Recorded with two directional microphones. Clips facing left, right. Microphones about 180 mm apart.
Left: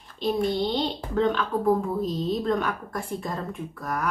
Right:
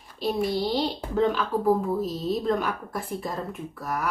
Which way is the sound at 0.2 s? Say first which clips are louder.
Left 1 dB; 5° right (ahead or behind).